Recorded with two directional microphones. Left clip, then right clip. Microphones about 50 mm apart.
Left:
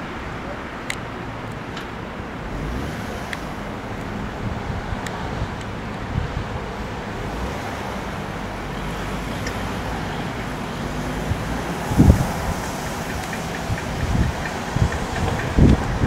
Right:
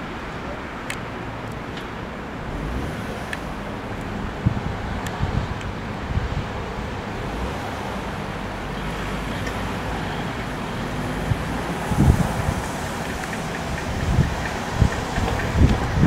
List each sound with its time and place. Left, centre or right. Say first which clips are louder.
11.6 s wind: left 4 dB; centre
14.4 s vehicle: even; centre